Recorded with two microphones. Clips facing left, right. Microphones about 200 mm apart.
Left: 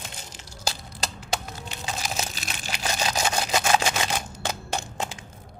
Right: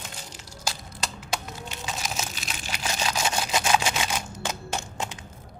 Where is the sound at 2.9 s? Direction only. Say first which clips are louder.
Left 1 dB; 40° left (ahead or behind).